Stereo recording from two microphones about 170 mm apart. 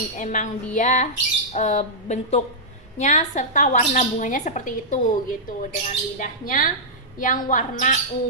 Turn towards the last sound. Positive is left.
turn(degrees=50)  # may be behind; listen again after turning